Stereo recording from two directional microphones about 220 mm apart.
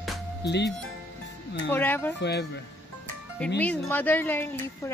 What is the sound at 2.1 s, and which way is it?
Speech, 50° left (ahead or behind).